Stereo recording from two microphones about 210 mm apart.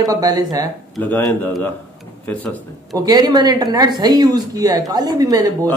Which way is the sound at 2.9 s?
20° right (ahead or behind).